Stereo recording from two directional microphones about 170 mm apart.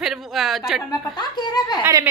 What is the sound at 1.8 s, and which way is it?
Speech, 20° right (ahead or behind).